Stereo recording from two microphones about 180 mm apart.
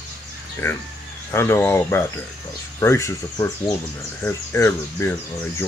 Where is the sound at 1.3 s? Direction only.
15° left (ahead or behind).